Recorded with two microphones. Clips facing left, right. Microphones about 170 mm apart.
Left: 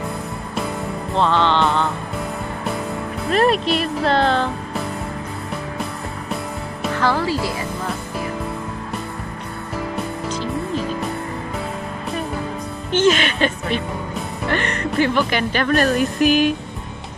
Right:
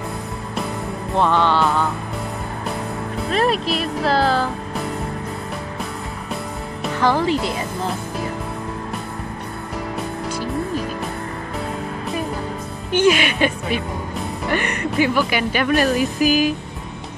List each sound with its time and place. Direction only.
1.1 s music: 10° right (ahead or behind)
3.3 s speech: centre (ahead or behind)
7.0 s speech: 15° right (ahead or behind)
12.9 s speech: 10° right (ahead or behind)